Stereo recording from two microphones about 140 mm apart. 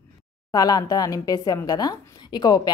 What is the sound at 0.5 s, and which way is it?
Speech, 25° left (ahead or behind).